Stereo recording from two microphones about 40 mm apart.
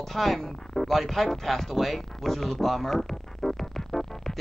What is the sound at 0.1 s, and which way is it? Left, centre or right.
Speech, centre.